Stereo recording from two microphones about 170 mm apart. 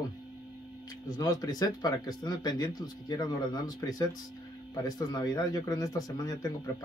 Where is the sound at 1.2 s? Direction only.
20° left (ahead or behind).